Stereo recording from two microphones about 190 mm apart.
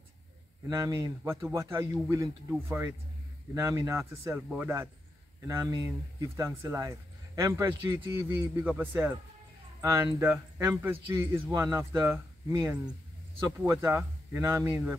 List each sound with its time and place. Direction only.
0.7 s speech: 20° right (ahead or behind)